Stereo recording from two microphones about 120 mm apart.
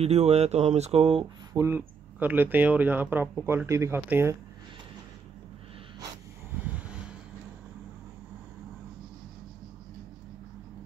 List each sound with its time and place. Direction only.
0.0 s speech: 60° right (ahead or behind)
1.2 s speech: 30° right (ahead or behind)
1.7 s speech: 15° right (ahead or behind)